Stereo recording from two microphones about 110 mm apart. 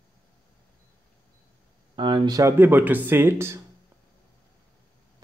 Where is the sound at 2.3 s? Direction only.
25° right (ahead or behind).